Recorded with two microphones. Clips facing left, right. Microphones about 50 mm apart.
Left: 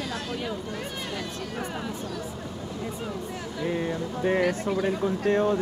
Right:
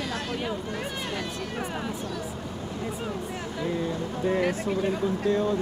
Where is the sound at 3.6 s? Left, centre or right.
Left.